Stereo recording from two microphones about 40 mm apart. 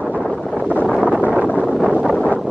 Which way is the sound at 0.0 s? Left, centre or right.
Centre.